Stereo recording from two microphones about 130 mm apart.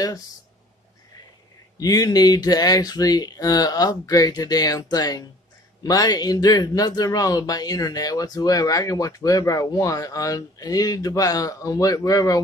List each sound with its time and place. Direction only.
1.8 s speech: 30° left (ahead or behind)